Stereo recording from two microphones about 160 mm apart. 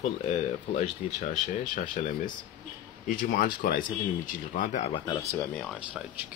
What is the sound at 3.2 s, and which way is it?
Speech, 65° left (ahead or behind).